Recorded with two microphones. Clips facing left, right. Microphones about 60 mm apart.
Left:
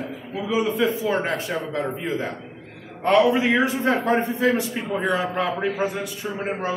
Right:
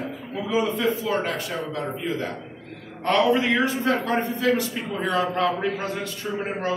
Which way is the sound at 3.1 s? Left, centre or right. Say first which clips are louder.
Left 2 dB; centre.